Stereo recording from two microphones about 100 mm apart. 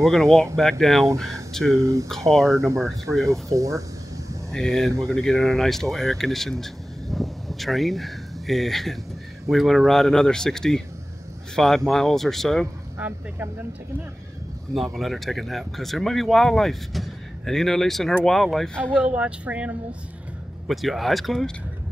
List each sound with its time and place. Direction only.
0.0 s speech: 5° left (ahead or behind)
1.7 s speech: 30° right (ahead or behind)
2.0 s speech: 5° left (ahead or behind)
2.5 s speech: 30° right (ahead or behind)
4.5 s speech: 5° left (ahead or behind)
13.0 s speech: 20° right (ahead or behind)
14.8 s speech: centre (ahead or behind)
18.9 s speech: 10° right (ahead or behind)
20.6 s speech: centre (ahead or behind)